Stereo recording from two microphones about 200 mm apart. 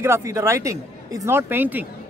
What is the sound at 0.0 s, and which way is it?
A man's voice, 15° right (ahead or behind).